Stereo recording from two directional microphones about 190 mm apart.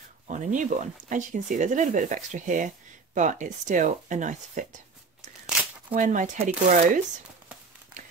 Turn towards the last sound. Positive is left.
turn(degrees=-40)  # may be behind; listen again after turning